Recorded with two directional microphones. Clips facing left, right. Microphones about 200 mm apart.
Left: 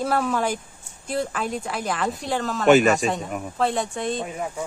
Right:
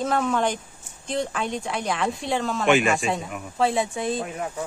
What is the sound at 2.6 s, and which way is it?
Speech, 40° left (ahead or behind).